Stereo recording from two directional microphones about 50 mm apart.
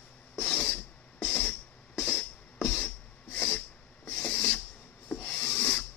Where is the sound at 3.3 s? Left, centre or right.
Left.